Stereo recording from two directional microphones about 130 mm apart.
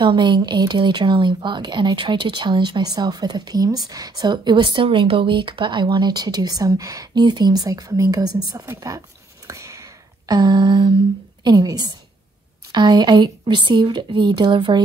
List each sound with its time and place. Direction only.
0.0 s a woman's voice: 35° right (ahead or behind)
9.5 s a sound: 25° right (ahead or behind)
11.4 s a woman's voice: 30° right (ahead or behind)